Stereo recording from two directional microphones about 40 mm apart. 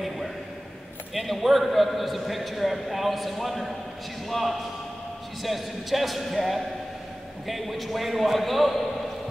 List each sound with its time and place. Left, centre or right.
1.1 s a man's voice: centre